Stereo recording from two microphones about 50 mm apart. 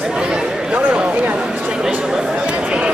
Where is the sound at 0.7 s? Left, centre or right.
Right.